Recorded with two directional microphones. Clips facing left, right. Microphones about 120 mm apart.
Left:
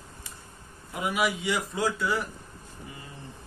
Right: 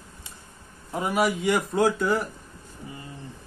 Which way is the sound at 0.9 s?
40° right (ahead or behind).